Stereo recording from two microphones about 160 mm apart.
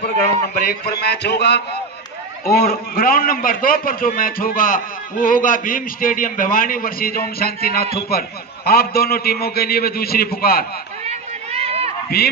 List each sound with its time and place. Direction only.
0.6 s a man's voice: 75° left (ahead or behind); by 1.8 s 90° left
2.4 s a man's voice: 70° left (ahead or behind)
11.1 s run: 40° right (ahead or behind)
12.1 s speech: 80° left